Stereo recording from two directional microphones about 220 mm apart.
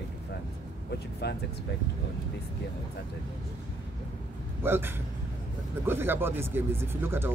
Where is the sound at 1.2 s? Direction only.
50° left (ahead or behind).